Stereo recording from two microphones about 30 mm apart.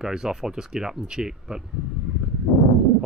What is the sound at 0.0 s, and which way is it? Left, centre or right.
Speech, right.